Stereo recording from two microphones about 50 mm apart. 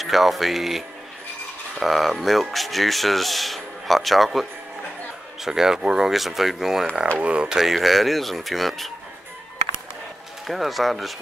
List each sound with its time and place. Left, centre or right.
0.0 s speech: centre
7.2 s speech: right
7.4 s speech: centre
10.4 s speech: centre